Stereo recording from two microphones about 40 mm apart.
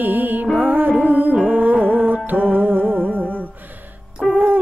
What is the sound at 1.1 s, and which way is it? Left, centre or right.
Music, right.